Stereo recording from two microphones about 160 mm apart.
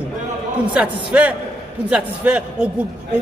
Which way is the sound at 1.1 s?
10° right (ahead or behind).